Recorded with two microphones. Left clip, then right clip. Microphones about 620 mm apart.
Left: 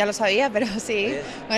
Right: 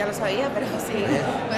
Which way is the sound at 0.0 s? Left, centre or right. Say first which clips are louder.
Left 4 dB; left.